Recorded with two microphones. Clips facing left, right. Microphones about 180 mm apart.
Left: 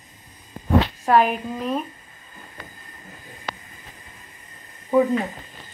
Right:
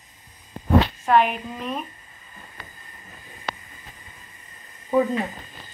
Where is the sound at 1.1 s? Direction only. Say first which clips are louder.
Left 3 dB; 35° left (ahead or behind).